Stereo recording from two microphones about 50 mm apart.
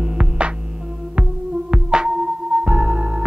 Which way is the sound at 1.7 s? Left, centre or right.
Centre.